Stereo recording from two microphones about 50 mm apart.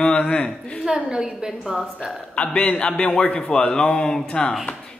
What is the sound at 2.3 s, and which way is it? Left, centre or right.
Speech, left.